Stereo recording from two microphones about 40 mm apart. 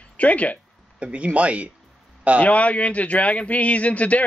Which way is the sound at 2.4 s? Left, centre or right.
Left.